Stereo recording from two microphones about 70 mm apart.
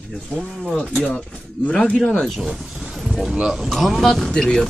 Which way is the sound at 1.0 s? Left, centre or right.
Centre.